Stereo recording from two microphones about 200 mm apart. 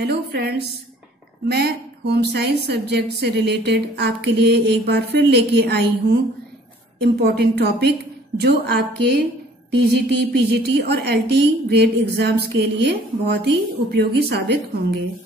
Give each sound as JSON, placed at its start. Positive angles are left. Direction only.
{"t": 0.0, "sound": "a woman's voice", "side_deg": -55}
{"t": 7.0, "sound": "a woman's voice", "side_deg": -50}